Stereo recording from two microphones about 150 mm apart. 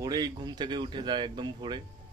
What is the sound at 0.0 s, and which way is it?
Speech, 25° right (ahead or behind).